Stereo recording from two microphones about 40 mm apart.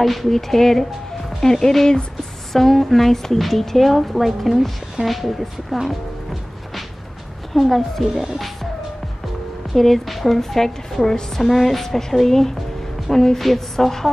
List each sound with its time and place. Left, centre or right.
0.0 s a woman's voice: centre
7.5 s a woman's voice: centre
8.1 s music: right
9.8 s a woman's voice: centre
11.5 s a woman's voice: centre